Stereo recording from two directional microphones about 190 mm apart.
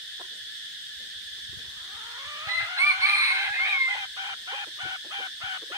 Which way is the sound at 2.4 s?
15° right (ahead or behind).